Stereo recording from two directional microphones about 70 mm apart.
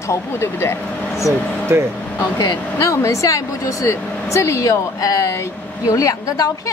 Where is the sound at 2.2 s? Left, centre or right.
Left.